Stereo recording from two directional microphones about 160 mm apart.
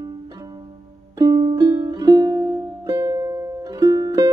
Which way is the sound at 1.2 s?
25° right (ahead or behind).